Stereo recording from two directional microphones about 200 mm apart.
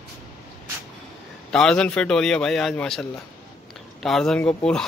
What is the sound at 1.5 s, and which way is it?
Speech, 5° left (ahead or behind).